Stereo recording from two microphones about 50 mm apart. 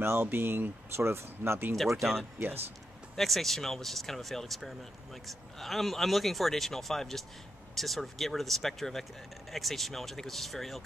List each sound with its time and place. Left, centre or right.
0.0 s speech: right
3.2 s speech: centre